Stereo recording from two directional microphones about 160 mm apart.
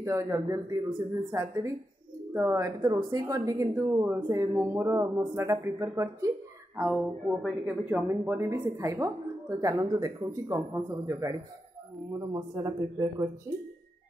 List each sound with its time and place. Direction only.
0.0 s speech: 20° right (ahead or behind)
6.8 s speech: 10° right (ahead or behind)